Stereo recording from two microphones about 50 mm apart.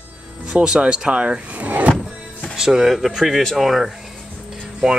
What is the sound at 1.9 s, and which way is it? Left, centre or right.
Music, centre.